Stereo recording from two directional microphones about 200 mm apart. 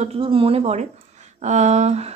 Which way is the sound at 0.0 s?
30° right (ahead or behind).